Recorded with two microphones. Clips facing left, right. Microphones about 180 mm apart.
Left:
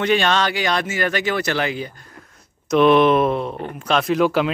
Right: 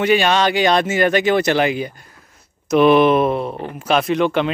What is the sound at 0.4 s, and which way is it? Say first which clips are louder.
Speech: right 5 dB; 20° right (ahead or behind).